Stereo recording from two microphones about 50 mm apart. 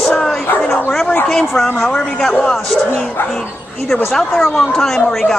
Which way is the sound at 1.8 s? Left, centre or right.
Centre.